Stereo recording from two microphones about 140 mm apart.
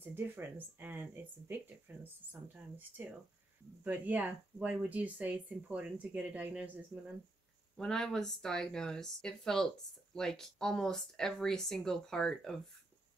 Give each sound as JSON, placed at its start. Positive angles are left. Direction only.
{"t": 0.0, "sound": "speech", "side_deg": -15}
{"t": 2.0, "sound": "speech", "side_deg": -15}
{"t": 7.7, "sound": "speech", "side_deg": 5}